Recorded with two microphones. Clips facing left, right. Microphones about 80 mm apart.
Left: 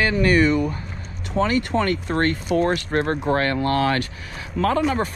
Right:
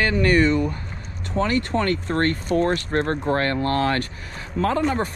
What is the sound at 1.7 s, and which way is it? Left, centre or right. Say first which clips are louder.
Speech: left 1 dB; centre.